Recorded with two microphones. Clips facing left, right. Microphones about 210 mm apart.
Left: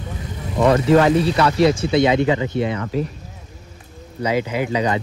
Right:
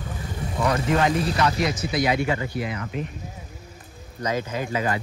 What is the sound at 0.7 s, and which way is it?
Speech, 65° left (ahead or behind).